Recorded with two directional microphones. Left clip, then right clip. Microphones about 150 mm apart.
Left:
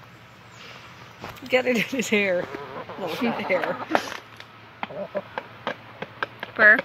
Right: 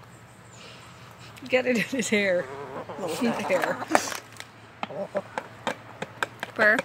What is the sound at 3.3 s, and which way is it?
Speech, 15° left (ahead or behind).